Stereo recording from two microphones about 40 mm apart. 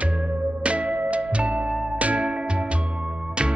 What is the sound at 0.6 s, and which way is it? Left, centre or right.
Music, right.